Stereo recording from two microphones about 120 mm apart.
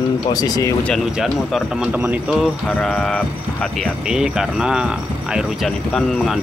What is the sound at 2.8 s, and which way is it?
Speech, 10° left (ahead or behind).